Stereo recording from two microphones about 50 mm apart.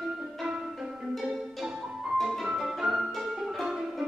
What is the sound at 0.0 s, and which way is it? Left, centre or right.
Music, centre.